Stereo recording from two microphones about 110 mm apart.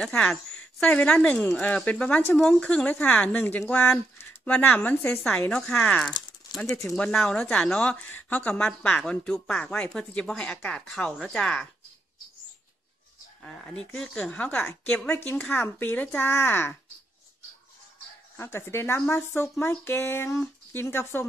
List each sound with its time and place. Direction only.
0.0 s speech: 5° left (ahead or behind)
13.4 s speech: 5° left (ahead or behind)
18.3 s speech: 25° left (ahead or behind)